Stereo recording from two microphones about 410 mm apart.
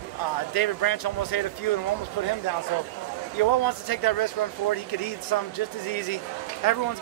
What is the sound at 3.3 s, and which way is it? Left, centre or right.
A man's voice, left.